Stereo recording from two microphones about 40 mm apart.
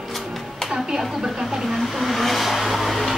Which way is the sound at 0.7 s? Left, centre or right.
Centre.